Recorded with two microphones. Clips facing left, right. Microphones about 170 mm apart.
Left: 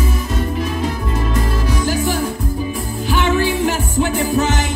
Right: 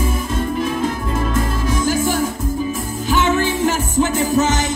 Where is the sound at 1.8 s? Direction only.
45° right (ahead or behind).